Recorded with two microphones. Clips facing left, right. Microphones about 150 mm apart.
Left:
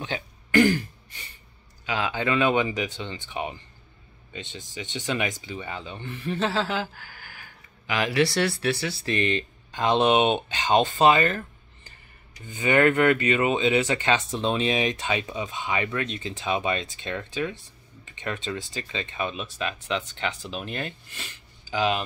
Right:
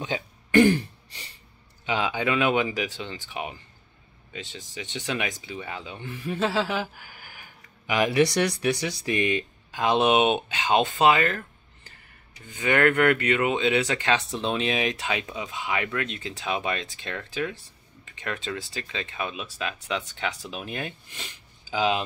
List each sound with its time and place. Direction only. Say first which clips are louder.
0.0 s throat clearing: right 2 dB; 20° right (ahead or behind)
1.9 s speech: right 1 dB; 15° right (ahead or behind)